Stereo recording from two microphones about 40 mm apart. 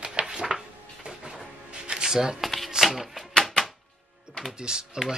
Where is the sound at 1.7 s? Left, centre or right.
Right.